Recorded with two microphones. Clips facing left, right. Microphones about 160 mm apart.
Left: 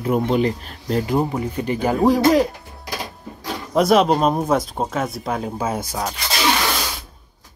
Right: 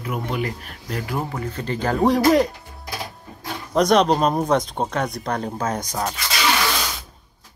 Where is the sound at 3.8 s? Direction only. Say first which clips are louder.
Left 1 dB; 5° left (ahead or behind).